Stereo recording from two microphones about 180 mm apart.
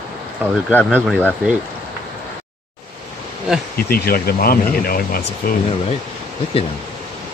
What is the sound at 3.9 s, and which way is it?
Speech, 55° left (ahead or behind).